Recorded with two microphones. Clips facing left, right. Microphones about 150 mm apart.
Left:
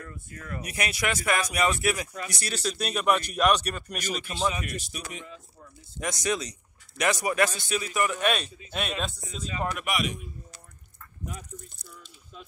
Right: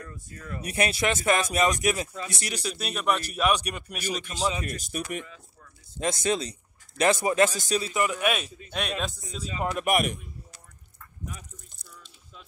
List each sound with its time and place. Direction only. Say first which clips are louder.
0.5 s speech: right 5 dB; 30° right (ahead or behind)
2.5 s speech: left 4 dB; 5° right (ahead or behind)
4.1 s speech: even; centre (ahead or behind)
4.5 s speech: right 1 dB; 30° right (ahead or behind)
4.8 s speech: right 7 dB; 55° right (ahead or behind)
5.9 s speech: right 3 dB; 25° right (ahead or behind)
7.5 s speech: right 3 dB; 40° right (ahead or behind)
7.9 s speech: left 2 dB; 20° right (ahead or behind)
8.2 s speech: even; 5° right (ahead or behind)
9.8 s speech: right 8 dB; 55° right (ahead or behind)